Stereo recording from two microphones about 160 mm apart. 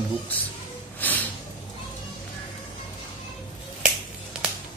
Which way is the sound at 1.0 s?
10° left (ahead or behind).